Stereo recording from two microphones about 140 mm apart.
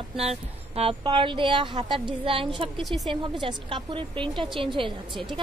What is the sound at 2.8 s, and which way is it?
Speech, centre (ahead or behind).